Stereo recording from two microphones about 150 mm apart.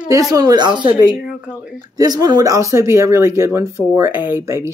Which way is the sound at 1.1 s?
5° right (ahead or behind).